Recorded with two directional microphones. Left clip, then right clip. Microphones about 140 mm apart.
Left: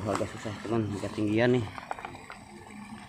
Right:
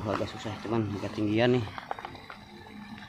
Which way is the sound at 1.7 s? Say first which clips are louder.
Even; 30° left (ahead or behind).